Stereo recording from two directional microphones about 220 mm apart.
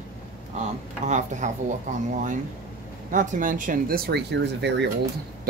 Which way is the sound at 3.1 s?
35° right (ahead or behind).